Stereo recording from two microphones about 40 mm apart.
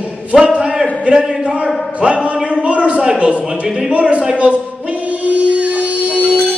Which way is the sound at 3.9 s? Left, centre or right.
Right.